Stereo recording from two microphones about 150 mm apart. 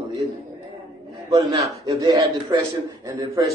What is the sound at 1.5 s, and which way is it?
A man's voice, 25° right (ahead or behind).